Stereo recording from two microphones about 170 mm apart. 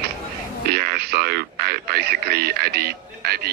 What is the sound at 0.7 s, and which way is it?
Radio, 65° right (ahead or behind).